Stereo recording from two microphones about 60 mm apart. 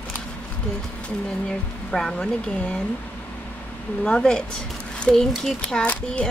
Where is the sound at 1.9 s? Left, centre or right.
Centre.